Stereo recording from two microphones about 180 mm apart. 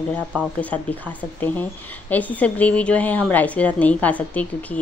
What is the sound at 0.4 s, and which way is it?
A woman's voice, 10° left (ahead or behind).